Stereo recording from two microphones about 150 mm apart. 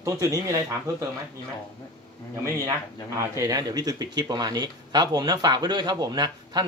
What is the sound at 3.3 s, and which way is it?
Speech, 25° right (ahead or behind).